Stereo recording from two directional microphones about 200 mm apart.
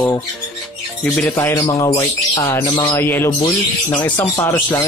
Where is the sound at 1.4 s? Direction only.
15° left (ahead or behind).